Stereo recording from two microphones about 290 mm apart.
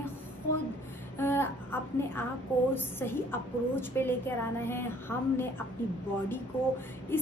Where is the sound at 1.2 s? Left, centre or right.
Centre.